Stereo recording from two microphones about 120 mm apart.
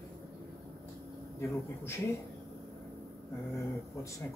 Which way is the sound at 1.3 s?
20° left (ahead or behind).